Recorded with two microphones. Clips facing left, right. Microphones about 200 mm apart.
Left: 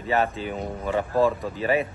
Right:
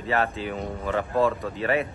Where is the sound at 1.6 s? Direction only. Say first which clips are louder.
Left 1 dB; 20° left (ahead or behind).